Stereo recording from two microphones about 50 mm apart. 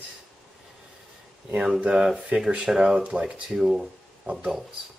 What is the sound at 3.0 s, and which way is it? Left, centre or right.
Speech, right.